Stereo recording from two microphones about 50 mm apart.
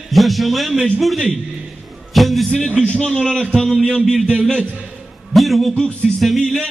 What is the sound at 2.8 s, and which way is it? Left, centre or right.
A man's voice, left.